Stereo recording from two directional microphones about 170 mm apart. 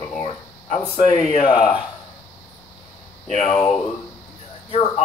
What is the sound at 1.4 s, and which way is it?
Speech, 30° left (ahead or behind).